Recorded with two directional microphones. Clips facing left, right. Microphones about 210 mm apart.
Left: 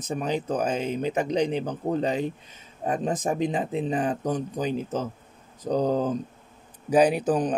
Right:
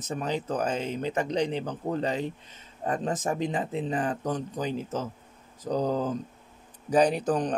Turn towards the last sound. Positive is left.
turn(degrees=5)  # may be behind; listen again after turning